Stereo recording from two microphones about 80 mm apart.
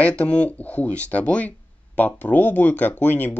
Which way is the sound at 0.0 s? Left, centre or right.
Centre.